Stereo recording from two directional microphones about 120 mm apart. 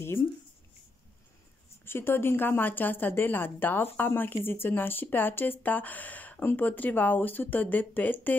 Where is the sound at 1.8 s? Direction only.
20° left (ahead or behind).